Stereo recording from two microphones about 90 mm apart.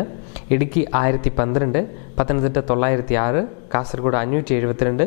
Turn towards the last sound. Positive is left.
turn(degrees=20)  # may be behind; listen again after turning